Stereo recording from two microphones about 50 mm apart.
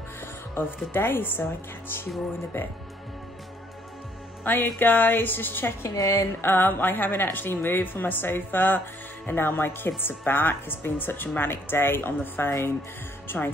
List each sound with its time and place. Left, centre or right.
0.9 s a woman's voice: left
4.5 s a woman's voice: left
5.9 s a woman's voice: left
6.4 s a woman's voice: left
13.3 s speech: left